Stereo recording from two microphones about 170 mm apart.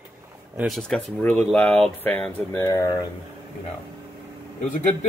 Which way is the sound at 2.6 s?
20° left (ahead or behind).